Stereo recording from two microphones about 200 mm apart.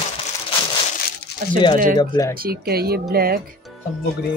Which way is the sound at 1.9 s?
20° left (ahead or behind).